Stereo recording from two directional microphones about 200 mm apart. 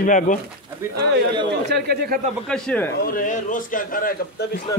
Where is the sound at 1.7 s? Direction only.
50° right (ahead or behind).